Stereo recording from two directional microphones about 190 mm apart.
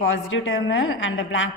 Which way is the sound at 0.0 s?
80° left.